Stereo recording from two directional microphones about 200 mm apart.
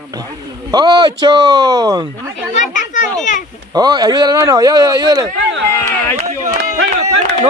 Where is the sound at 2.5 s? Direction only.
40° left (ahead or behind).